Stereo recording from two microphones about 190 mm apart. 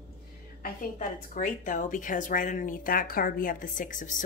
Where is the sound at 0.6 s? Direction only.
45° left (ahead or behind).